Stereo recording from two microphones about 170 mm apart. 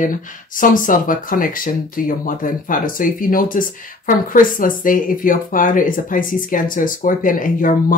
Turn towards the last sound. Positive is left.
turn(degrees=50)  # may be behind; listen again after turning